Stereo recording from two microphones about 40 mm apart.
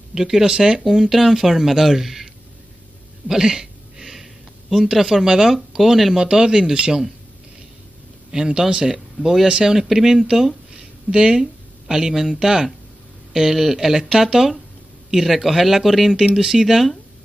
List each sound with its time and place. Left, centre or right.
0.1 s speech: centre
0.8 s speech: centre
3.3 s a sound: centre
5.8 s speech: centre
6.1 s speech: centre
8.3 s speech: centre
10.7 s a sound: centre
11.9 s speech: centre